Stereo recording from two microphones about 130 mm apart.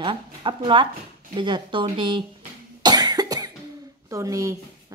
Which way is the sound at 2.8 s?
30° right (ahead or behind).